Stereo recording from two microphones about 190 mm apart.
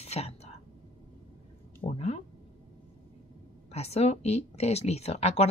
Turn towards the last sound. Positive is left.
turn(degrees=35)  # may be behind; listen again after turning